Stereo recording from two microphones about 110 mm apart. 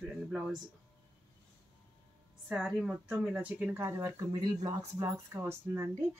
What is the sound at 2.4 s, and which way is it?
Speech, 5° right (ahead or behind).